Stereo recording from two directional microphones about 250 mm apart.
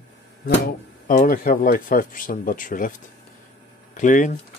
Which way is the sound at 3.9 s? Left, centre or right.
Left.